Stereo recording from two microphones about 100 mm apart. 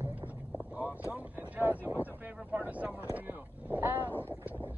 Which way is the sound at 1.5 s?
15° right (ahead or behind).